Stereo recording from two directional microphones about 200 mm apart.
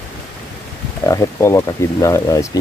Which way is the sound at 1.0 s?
15° left (ahead or behind).